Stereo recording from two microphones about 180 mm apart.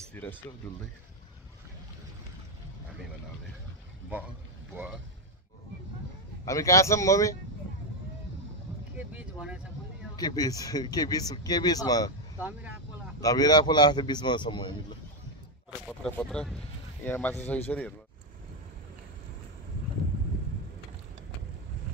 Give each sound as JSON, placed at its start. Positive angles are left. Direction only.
{"t": 0.1, "sound": "speech", "side_deg": 10}
{"t": 6.4, "sound": "a man's voice", "side_deg": 15}
{"t": 8.9, "sound": "speech", "side_deg": -5}
{"t": 10.1, "sound": "speech", "side_deg": 20}
{"t": 16.0, "sound": "a man's voice", "side_deg": 5}